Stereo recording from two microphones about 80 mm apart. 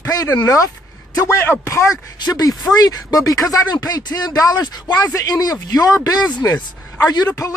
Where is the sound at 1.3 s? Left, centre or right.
Left.